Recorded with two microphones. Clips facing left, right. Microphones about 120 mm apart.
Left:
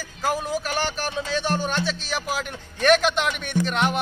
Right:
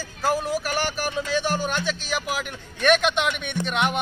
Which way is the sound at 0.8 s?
5° right (ahead or behind).